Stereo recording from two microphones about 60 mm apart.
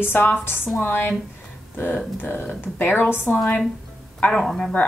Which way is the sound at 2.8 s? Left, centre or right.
Left.